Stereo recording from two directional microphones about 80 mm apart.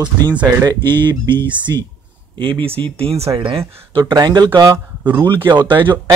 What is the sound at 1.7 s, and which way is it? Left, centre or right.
Speech, right.